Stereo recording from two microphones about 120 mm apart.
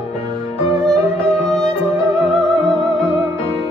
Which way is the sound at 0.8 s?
5° left (ahead or behind).